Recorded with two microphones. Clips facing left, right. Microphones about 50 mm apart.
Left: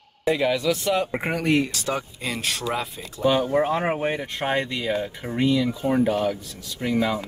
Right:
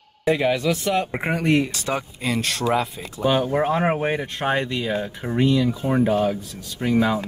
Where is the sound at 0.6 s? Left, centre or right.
Right.